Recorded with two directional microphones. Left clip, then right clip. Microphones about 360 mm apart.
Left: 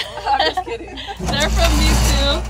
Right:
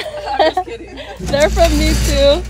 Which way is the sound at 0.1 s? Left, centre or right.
Centre.